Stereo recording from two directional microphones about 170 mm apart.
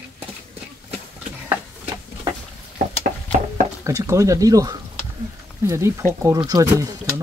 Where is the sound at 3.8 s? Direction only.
20° right (ahead or behind).